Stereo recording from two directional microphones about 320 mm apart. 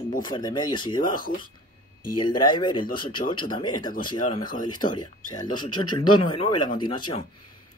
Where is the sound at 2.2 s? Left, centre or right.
Centre.